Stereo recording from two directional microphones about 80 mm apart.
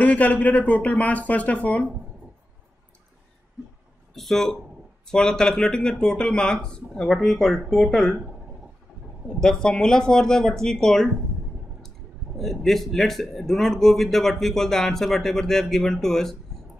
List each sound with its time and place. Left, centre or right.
0.0 s speech: centre
4.1 s a man's voice: centre
9.4 s speech: centre
12.4 s a man's voice: centre